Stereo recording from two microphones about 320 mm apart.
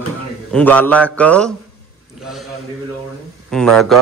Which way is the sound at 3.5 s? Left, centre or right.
Centre.